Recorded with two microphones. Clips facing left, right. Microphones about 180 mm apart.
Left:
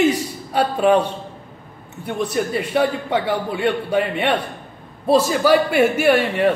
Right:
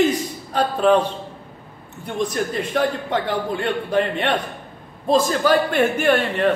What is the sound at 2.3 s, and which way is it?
A man's voice, 10° left (ahead or behind).